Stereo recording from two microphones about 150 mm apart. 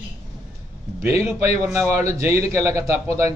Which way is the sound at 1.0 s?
20° right (ahead or behind).